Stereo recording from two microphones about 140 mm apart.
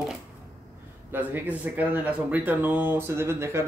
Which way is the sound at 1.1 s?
15° right (ahead or behind).